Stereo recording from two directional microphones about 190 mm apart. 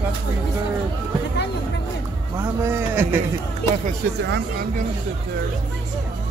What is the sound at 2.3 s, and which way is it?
Speech, 15° right (ahead or behind).